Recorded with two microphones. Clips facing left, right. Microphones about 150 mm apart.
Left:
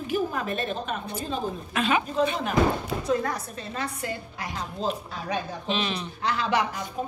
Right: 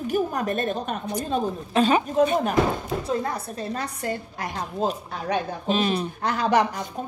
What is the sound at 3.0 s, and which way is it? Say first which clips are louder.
A woman's voice: even; 30° right (ahead or behind).